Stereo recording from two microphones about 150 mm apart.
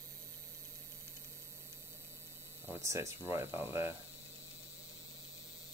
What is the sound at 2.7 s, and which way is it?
Speech, 20° right (ahead or behind).